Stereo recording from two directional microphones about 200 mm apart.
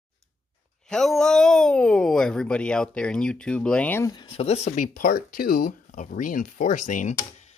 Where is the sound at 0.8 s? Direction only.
Centre (ahead or behind).